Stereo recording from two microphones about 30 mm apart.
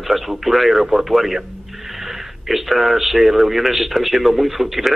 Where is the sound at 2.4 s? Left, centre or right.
Centre.